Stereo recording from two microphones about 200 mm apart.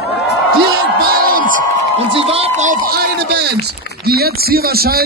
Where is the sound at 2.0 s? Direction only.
30° right (ahead or behind).